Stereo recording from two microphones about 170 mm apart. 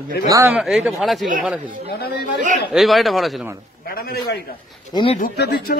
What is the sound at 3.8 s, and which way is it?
Speech, 60° left (ahead or behind).